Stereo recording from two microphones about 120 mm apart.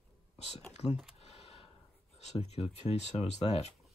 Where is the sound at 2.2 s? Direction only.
65° left (ahead or behind).